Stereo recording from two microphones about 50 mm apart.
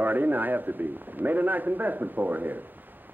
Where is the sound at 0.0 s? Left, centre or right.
Right.